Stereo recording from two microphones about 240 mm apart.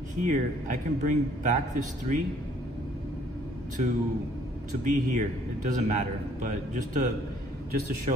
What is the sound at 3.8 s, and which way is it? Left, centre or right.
A man's voice, right.